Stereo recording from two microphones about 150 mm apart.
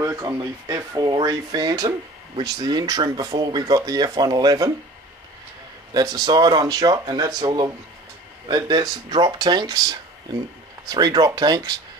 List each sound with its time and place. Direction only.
0.0 s speech: 20° right (ahead or behind)
5.9 s speech: 25° right (ahead or behind)